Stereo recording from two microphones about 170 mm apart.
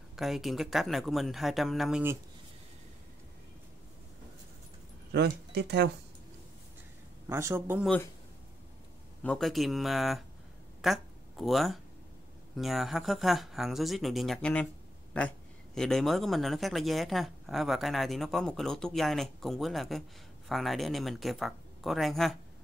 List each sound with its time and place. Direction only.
0.1 s speech: centre (ahead or behind)
5.1 s speech: 75° right (ahead or behind)
7.2 s a man's voice: 15° right (ahead or behind)
9.2 s speech: 5° left (ahead or behind)